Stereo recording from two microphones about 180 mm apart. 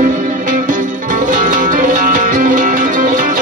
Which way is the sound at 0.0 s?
50° right (ahead or behind).